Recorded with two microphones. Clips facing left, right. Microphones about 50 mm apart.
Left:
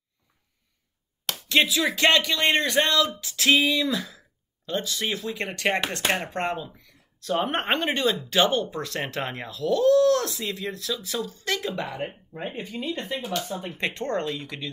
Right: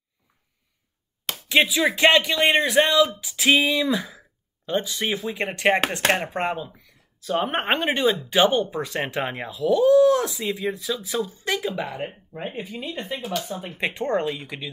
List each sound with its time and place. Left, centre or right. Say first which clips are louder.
1.5 s speech: right 2 dB; centre